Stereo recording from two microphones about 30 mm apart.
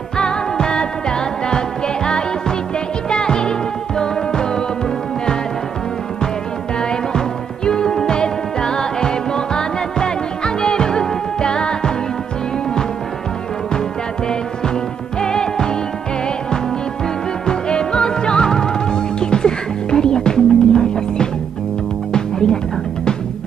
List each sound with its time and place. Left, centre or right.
0.2 s music: left
3.1 s music: left
6.8 s music: left
15.1 s music: left
17.5 s music: left